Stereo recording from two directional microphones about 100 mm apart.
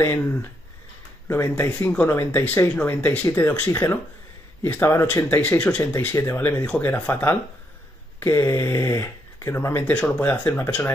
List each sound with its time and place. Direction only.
0.0 s speech: 25° left (ahead or behind)
1.9 s speech: 20° left (ahead or behind)
9.8 s speech: 15° left (ahead or behind)